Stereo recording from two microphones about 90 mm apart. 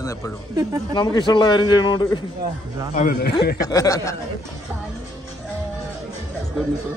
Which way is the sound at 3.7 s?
40° left (ahead or behind).